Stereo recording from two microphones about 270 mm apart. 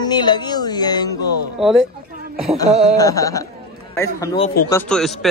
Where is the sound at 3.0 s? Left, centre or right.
Centre.